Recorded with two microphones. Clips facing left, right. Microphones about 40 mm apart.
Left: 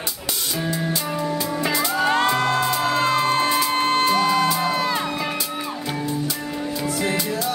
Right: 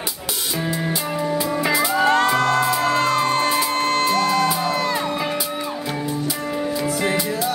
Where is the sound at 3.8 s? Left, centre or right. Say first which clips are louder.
Even; centre.